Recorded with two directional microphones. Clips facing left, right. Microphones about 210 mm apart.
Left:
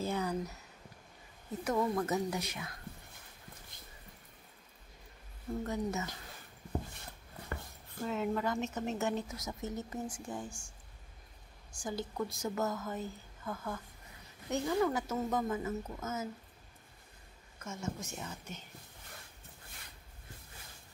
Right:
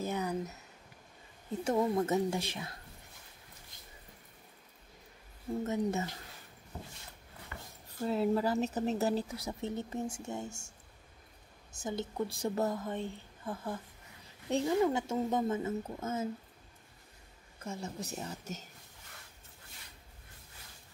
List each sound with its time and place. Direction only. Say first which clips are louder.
0.0 s a sound: even; 20° right (ahead or behind)
1.6 s speech: right 2 dB; 25° right (ahead or behind)
5.6 s speech: right 3 dB; 25° right (ahead or behind)
8.0 s speech: right 4 dB; 35° right (ahead or behind)
11.7 s speech: right 2 dB; 25° right (ahead or behind)
17.6 s speech: right 1 dB; 35° right (ahead or behind)